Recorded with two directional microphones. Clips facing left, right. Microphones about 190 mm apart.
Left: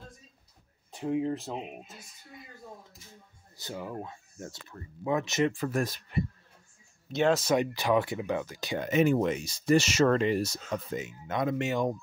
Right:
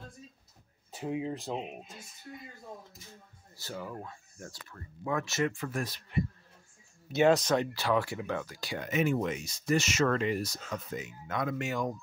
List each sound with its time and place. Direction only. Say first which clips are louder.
0.9 s speech: left 4 dB; 5° right (ahead or behind)
3.5 s speech: left 3 dB; 20° left (ahead or behind)
5.5 s speech: left 5 dB; 40° left (ahead or behind)
7.1 s speech: right 1 dB; 5° right (ahead or behind)
7.4 s speech: left 2 dB; 15° left (ahead or behind)